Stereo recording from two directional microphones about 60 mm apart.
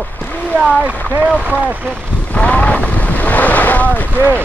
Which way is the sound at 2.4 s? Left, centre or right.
Centre.